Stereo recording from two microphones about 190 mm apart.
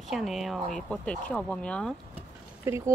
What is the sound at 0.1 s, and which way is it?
Speech, centre (ahead or behind).